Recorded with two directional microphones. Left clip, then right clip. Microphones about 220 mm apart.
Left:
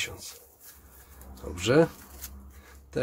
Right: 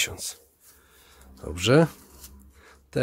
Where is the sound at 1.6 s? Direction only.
40° right (ahead or behind).